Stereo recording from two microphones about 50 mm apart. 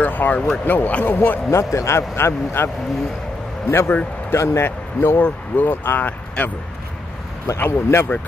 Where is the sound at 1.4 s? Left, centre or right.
Left.